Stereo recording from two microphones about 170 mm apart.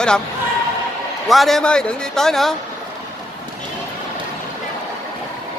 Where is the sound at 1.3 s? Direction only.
Centre (ahead or behind).